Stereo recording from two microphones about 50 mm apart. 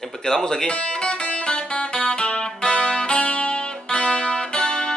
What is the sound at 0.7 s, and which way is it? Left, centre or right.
Music, left.